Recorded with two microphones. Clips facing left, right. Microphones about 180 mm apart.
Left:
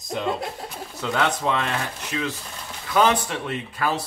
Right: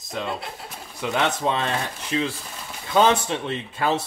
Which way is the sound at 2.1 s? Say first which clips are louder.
Right 4 dB; 30° right (ahead or behind).